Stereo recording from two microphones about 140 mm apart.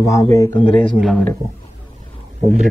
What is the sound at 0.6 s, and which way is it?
Speech, 40° left (ahead or behind).